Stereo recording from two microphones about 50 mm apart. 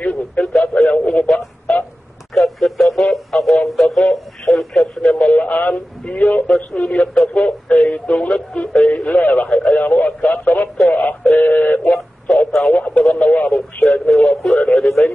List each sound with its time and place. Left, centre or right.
0.0 s radio: left
0.5 s radio: centre
2.3 s a sound: centre
5.0 s a sound: left
8.5 s radio: left
9.7 s telephone: left
12.4 s radio: centre
12.7 s radio: left